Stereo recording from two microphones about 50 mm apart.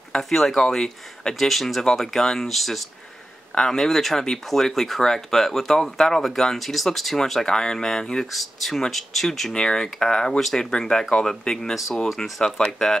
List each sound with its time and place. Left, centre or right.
0.1 s speech: centre
9.5 s speech: centre